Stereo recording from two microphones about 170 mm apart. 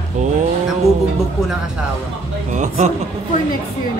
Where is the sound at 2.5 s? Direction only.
45° right (ahead or behind).